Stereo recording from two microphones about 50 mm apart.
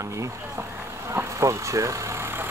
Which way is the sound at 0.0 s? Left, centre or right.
Right.